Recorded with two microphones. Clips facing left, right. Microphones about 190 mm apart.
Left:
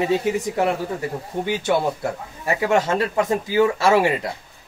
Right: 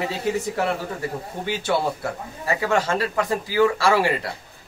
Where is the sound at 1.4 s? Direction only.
20° left (ahead or behind).